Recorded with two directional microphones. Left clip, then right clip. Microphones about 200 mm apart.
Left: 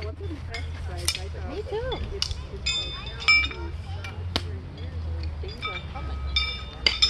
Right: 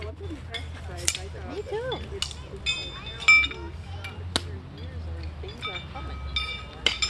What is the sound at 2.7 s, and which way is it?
Speech, 10° left (ahead or behind).